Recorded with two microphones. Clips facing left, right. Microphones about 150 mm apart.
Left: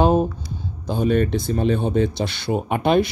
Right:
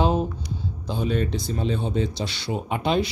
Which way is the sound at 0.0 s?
50° left (ahead or behind).